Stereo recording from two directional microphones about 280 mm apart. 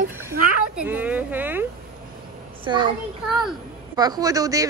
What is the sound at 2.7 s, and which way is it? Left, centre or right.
Speech, centre.